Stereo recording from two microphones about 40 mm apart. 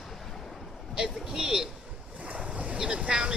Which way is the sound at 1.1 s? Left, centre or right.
Centre.